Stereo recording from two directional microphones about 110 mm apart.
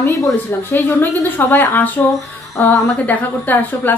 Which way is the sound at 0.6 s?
20° left (ahead or behind).